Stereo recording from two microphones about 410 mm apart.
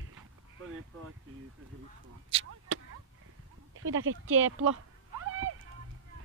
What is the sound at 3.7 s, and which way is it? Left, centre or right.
Speech, right.